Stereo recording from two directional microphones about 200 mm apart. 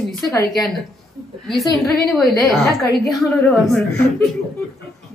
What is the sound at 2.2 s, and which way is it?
Speech, centre (ahead or behind).